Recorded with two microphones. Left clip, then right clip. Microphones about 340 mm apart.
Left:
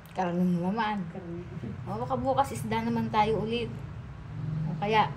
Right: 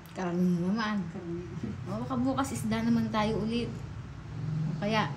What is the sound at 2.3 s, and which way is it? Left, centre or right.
A woman's voice, left.